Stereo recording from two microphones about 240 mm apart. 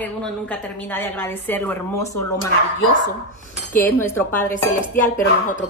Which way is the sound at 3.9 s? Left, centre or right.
Centre.